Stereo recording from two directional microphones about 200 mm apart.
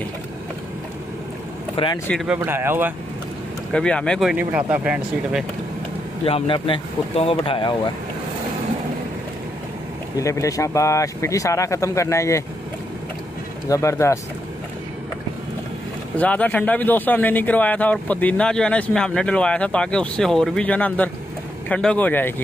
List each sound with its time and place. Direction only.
2.0 s speech: centre (ahead or behind)
3.7 s speech: 5° left (ahead or behind)
6.2 s speech: 25° left (ahead or behind)
10.1 s speech: 15° left (ahead or behind)
13.7 s speech: 15° left (ahead or behind)
16.2 s speech: 5° left (ahead or behind)